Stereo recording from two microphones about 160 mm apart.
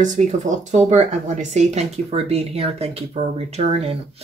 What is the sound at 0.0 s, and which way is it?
Speech, 50° right (ahead or behind).